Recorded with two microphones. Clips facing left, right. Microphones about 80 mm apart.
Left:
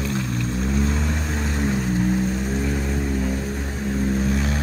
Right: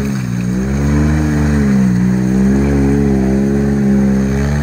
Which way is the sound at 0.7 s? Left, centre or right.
Right.